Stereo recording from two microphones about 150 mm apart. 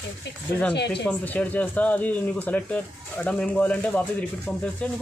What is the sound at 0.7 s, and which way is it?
Speech, 90° left.